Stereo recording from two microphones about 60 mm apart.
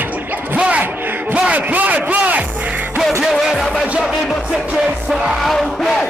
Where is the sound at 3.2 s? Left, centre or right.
Centre.